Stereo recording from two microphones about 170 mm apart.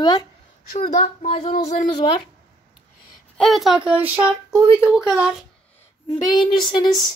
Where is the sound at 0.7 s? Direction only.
40° left (ahead or behind).